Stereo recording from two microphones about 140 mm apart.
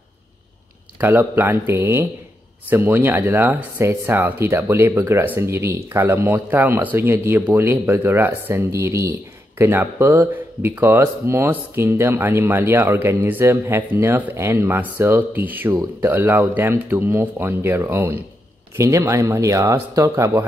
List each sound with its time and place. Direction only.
1.0 s speech: 15° right (ahead or behind)